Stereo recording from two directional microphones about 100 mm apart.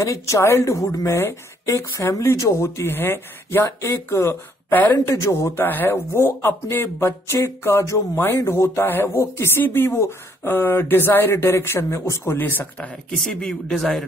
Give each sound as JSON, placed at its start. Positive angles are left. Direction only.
{"t": 0.0, "sound": "a woman's voice", "side_deg": 30}
{"t": 4.9, "sound": "speech", "side_deg": 30}
{"t": 13.2, "sound": "speech", "side_deg": 5}